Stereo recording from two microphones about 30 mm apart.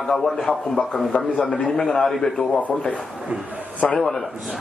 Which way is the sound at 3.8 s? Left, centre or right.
Left.